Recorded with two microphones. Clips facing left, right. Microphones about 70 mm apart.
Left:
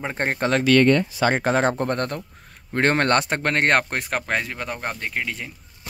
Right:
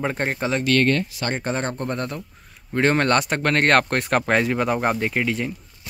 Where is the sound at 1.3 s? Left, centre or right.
Left.